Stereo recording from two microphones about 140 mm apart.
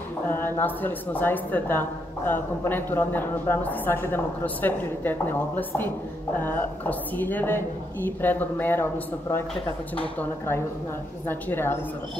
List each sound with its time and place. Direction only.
0.3 s a woman's voice: 15° left (ahead or behind)
11.2 s a woman's voice: 15° left (ahead or behind)